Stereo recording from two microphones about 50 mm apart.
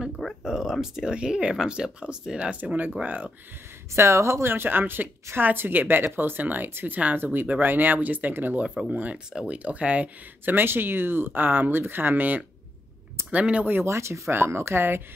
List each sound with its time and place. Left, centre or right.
0.4 s speech: centre
2.5 s speech: right
3.9 s a woman's voice: right
8.3 s a woman's voice: right
8.8 s speech: centre
9.5 s speech: right
10.4 s a woman's voice: right
13.8 s speech: right
14.3 s a woman's voice: right